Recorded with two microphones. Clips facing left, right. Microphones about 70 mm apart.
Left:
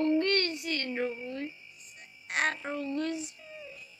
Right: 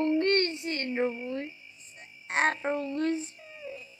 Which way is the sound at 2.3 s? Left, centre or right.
Right.